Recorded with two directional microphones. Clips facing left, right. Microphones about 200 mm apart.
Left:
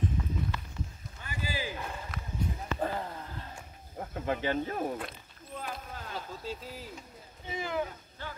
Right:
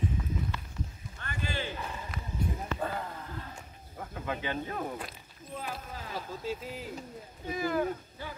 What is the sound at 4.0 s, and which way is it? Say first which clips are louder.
Cricket: left 3 dB; 40° left (ahead or behind).